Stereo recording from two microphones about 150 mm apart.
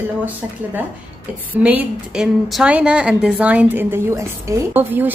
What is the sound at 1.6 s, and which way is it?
A woman's voice, 10° right (ahead or behind).